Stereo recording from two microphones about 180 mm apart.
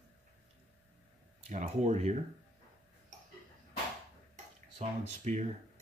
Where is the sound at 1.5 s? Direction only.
40° right (ahead or behind).